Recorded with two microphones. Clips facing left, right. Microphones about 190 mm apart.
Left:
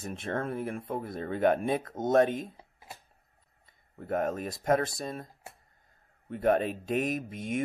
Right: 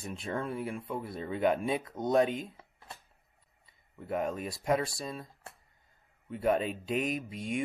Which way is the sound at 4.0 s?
45° left (ahead or behind).